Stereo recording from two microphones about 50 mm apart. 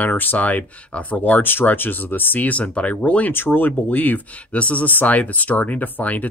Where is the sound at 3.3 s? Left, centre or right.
Left.